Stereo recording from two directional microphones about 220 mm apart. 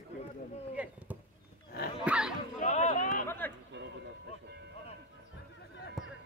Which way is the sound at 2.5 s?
35° left (ahead or behind).